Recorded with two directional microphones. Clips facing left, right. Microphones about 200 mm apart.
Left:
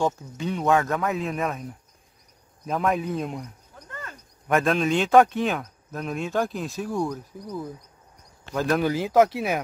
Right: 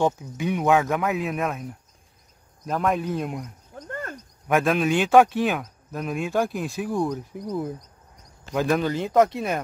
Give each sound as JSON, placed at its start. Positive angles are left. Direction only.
{"t": 0.0, "sound": "speech", "side_deg": -10}
{"t": 3.7, "sound": "a sound", "side_deg": -50}
{"t": 4.5, "sound": "speech", "side_deg": 0}
{"t": 6.8, "sound": "speech", "side_deg": 0}
{"t": 8.5, "sound": "speech", "side_deg": 0}